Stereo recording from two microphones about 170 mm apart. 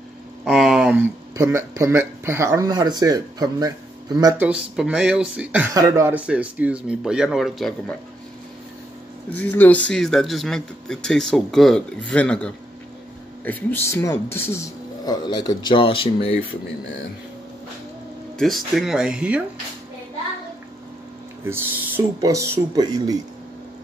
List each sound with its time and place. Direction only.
0.5 s speech: centre (ahead or behind); by 4.4 s 20° right (ahead or behind)
4.4 s speech: 5° right (ahead or behind)
5.7 s speech: 20° right (ahead or behind); by 8.0 s 5° left (ahead or behind)
9.3 s speech: 10° left (ahead or behind); by 16.3 s 35° left (ahead or behind)
18.4 s speech: centre (ahead or behind)
21.5 s speech: 15° right (ahead or behind)